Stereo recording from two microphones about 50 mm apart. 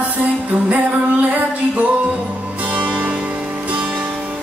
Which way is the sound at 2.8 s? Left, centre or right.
Right.